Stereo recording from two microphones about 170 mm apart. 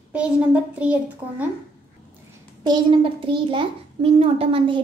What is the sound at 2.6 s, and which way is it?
A child's voice, 25° right (ahead or behind).